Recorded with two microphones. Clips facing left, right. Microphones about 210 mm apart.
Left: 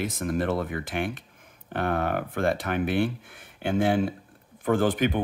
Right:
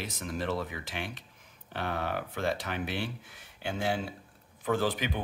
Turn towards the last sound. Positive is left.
turn(degrees=50)  # may be behind; listen again after turning